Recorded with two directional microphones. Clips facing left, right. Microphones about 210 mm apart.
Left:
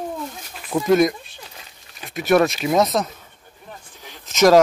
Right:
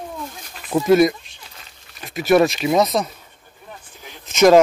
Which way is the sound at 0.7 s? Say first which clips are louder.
Right 2 dB; 5° right (ahead or behind).